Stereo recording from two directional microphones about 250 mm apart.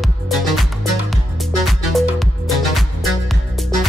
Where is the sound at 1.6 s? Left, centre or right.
Centre.